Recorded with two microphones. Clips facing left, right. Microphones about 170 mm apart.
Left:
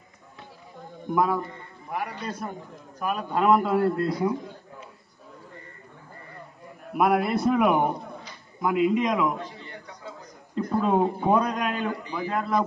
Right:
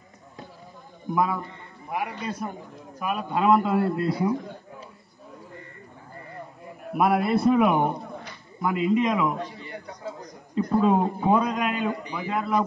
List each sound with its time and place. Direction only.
1.1 s a man's voice: 5° right (ahead or behind)
7.0 s a man's voice: centre (ahead or behind)
10.5 s a man's voice: centre (ahead or behind)
11.9 s a man's voice: 15° right (ahead or behind)
12.3 s a man's voice: 5° right (ahead or behind)